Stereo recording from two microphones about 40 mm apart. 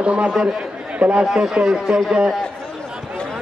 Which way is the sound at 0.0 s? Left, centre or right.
Right.